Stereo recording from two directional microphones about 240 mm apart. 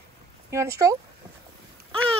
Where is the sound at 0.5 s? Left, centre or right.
Centre.